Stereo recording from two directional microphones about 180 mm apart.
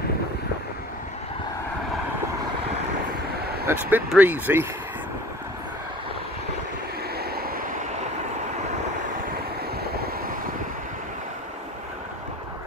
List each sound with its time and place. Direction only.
3.6 s speech: 10° right (ahead or behind)
7.2 s vehicle: 60° right (ahead or behind)
9.8 s waves: 60° right (ahead or behind)